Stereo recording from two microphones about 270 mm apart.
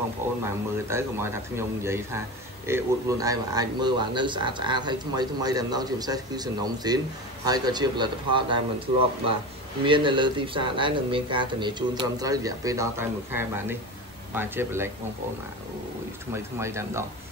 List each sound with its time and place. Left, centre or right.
0.4 s speech: centre
16.5 s speech: centre